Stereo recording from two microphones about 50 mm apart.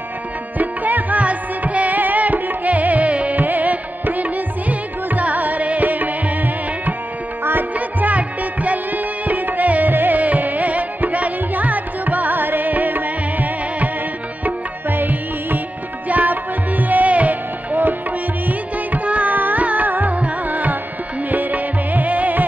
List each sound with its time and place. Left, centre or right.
0.6 s music: right
18.9 s carnatic music: right
21.3 s music: right